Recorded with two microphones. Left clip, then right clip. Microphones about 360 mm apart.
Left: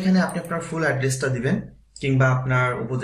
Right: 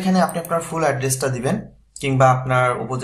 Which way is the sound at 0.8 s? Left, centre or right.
Centre.